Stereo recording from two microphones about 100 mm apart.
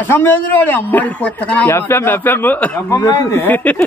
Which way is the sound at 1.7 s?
25° left (ahead or behind).